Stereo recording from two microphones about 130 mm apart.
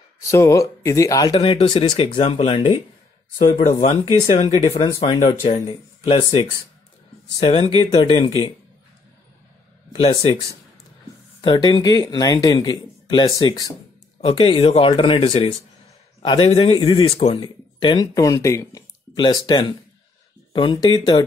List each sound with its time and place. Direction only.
0.2 s speech: 25° left (ahead or behind)
1.3 s speech: 45° left (ahead or behind)
5.0 s speech: 60° left (ahead or behind)
5.7 s speech: 40° left (ahead or behind)
9.9 s speech: 50° left (ahead or behind)
11.4 s speech: 35° left (ahead or behind)
14.2 s speech: 40° left (ahead or behind)
15.2 s speech: 50° left (ahead or behind)
17.1 s speech: 50° left (ahead or behind)
17.4 s speech: 35° left (ahead or behind); by 18.9 s 20° left (ahead or behind)
19.1 s speech: 35° left (ahead or behind)